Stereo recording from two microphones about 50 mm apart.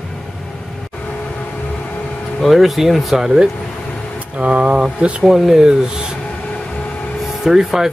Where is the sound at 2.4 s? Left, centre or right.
Centre.